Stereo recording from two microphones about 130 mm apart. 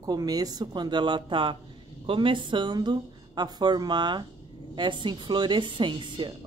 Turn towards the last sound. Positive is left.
turn(degrees=-40)  # may be behind; listen again after turning